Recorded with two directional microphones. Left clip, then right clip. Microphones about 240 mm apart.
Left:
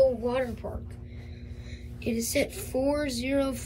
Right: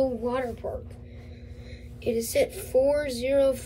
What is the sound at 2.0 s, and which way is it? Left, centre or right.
A woman's voice, centre.